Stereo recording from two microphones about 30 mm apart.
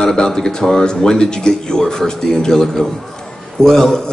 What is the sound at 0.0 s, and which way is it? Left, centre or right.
A man's voice, left.